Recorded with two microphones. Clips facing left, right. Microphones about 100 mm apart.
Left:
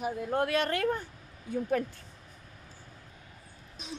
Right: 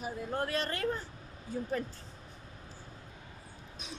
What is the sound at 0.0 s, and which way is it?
Speech, 60° left (ahead or behind).